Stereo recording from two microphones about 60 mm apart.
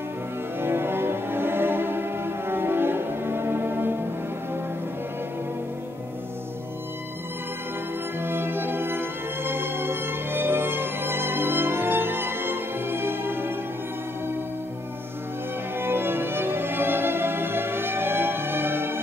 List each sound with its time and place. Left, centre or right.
0.6 s music: right
8.2 s music: right
15.8 s music: right